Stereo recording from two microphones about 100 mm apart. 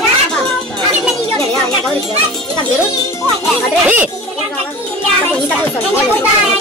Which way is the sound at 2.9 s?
30° left (ahead or behind).